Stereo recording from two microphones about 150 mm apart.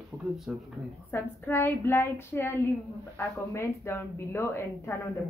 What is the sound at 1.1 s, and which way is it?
A woman's voice, 15° left (ahead or behind).